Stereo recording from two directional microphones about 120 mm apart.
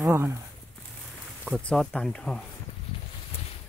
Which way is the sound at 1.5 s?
Centre (ahead or behind).